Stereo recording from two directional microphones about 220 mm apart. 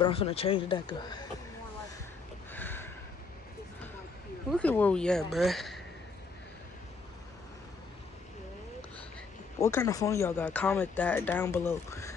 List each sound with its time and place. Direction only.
0.0 s speech: 25° left (ahead or behind)
2.5 s a sound: 10° left (ahead or behind)
4.5 s speech: 5° left (ahead or behind)
9.6 s speech: 15° left (ahead or behind)